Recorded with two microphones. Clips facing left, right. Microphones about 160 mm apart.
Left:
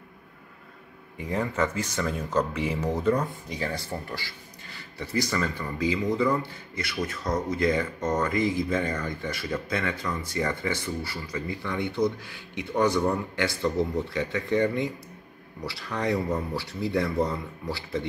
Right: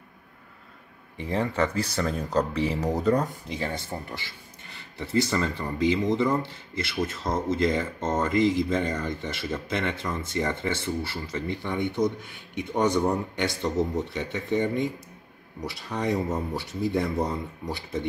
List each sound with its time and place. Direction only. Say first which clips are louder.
1.1 s speech: right 1 dB; 30° right (ahead or behind)
3.5 s speech: even; 20° right (ahead or behind)